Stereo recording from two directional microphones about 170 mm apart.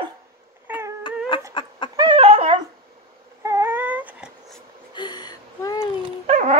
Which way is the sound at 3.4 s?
15° right (ahead or behind).